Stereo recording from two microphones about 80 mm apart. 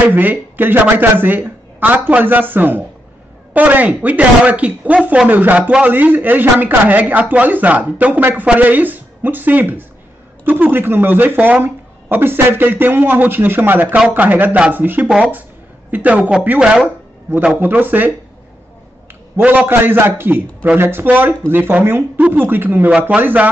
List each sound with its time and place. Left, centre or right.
0.0 s a woman's voice: right
17.6 s speech: right
19.3 s speech: centre